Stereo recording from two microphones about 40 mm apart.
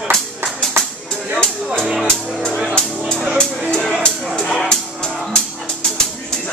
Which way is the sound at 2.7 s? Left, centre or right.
Centre.